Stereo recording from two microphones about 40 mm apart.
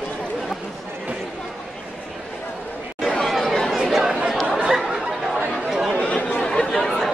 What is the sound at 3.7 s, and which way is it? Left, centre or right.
Chatter, centre.